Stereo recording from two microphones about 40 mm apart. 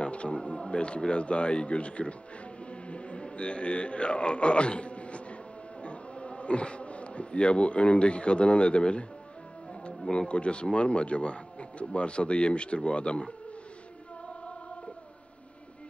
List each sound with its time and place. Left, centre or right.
0.0 s speech: left
10.1 s a man's voice: left